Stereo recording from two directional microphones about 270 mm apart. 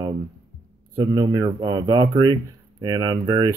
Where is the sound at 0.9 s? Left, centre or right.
Centre.